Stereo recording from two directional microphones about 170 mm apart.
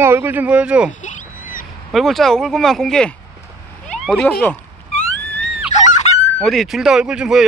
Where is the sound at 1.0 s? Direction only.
55° left (ahead or behind).